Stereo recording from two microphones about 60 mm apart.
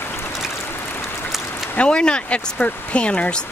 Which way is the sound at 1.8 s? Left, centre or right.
Centre.